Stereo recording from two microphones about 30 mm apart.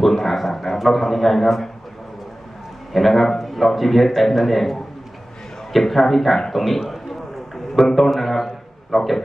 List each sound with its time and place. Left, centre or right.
0.0 s speech: centre
2.9 s a man's voice: centre
6.8 s a sound: centre
7.7 s speech: centre